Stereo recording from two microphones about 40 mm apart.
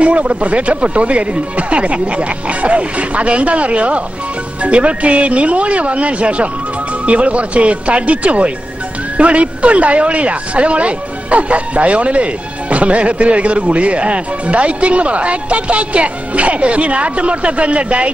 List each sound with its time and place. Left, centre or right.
0.0 s speech: right